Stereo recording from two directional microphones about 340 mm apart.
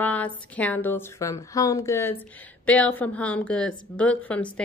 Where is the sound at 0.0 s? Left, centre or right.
Centre.